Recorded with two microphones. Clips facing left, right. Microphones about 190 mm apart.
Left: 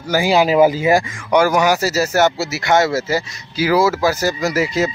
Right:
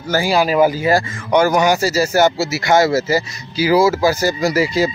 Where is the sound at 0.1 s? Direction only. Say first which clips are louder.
Left 1 dB; 20° left (ahead or behind); by 3.9 s centre (ahead or behind).